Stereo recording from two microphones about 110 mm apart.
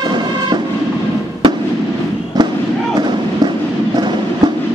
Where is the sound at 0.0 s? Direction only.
40° right (ahead or behind).